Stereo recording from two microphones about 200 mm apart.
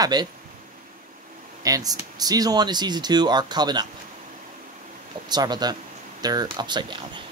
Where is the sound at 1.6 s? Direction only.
20° right (ahead or behind).